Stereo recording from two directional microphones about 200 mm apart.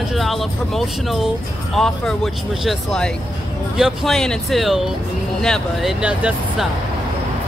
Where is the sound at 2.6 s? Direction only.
Centre (ahead or behind).